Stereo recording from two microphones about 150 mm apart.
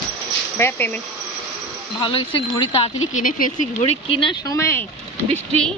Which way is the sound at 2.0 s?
40° left (ahead or behind).